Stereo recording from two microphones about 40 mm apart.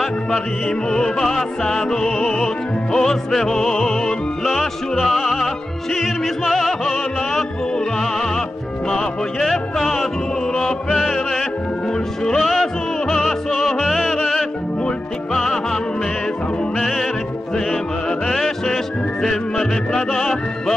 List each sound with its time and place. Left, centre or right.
0.8 s music: centre
4.5 s music: centre
8.9 s music: centre
12.4 s music: centre
15.3 s music: centre
18.2 s music: centre
20.2 s music: centre